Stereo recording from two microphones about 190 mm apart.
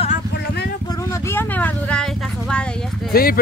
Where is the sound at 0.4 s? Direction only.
55° left (ahead or behind).